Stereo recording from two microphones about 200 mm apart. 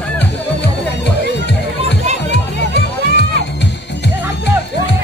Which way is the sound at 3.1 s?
60° left (ahead or behind).